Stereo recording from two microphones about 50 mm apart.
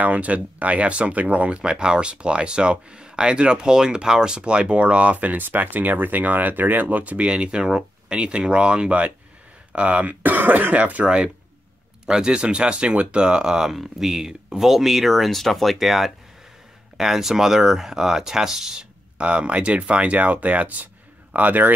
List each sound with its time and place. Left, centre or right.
0.0 s speech: right; by 18.9 s centre
19.1 s speech: right